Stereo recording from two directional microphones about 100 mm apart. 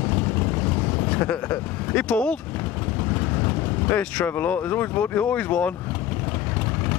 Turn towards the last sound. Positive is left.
turn(degrees=15)  # may be behind; listen again after turning